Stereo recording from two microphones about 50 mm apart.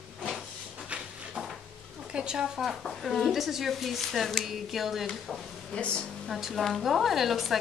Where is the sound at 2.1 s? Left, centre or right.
Centre.